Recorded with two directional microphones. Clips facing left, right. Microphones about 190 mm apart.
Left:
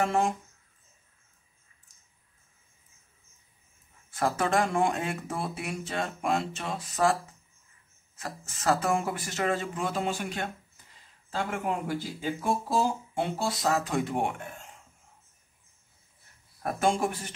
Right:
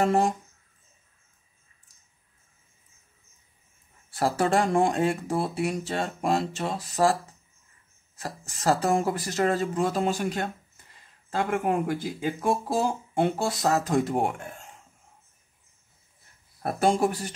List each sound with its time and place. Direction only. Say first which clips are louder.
0.0 s speech: right 4 dB; 35° right (ahead or behind)
4.1 s speech: right 3 dB; 35° right (ahead or behind)
8.2 s speech: right 3 dB; 35° right (ahead or behind)
11.2 s speech: right 5 dB; 55° right (ahead or behind); by 14.3 s 35° right (ahead or behind)
16.6 s speech: right 4 dB; 35° right (ahead or behind)